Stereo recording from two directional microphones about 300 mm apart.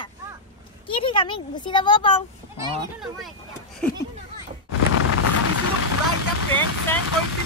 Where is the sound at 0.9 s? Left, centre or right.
Centre.